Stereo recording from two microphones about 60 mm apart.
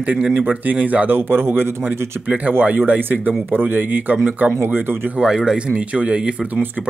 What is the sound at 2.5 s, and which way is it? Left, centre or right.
A man's voice, right.